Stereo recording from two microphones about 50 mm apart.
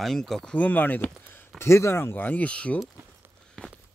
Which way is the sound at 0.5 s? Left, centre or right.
Left.